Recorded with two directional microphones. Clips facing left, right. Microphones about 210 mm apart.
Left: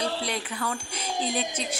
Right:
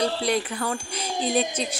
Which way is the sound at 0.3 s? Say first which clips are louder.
Right 6 dB; 40° right (ahead or behind).